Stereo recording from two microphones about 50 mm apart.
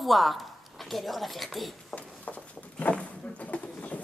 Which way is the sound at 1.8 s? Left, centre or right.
Left.